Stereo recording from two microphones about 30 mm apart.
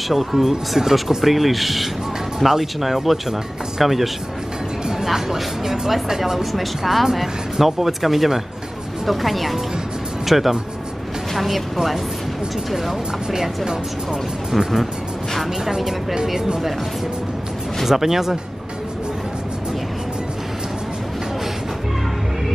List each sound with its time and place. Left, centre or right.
0.1 s speech: centre
0.9 s speech: centre
6.5 s speech: centre
12.7 s speech: centre
14.5 s speech: centre
17.8 s speech: centre